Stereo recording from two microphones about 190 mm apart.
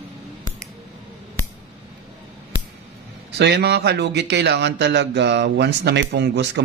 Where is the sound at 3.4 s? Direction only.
60° right (ahead or behind).